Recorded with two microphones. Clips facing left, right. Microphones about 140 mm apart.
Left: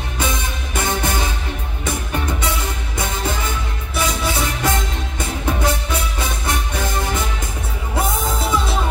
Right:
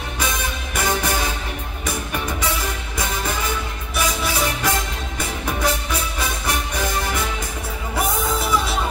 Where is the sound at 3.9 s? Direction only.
25° left (ahead or behind).